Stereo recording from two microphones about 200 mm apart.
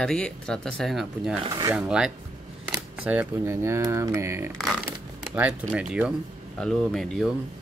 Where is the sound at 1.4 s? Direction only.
20° right (ahead or behind).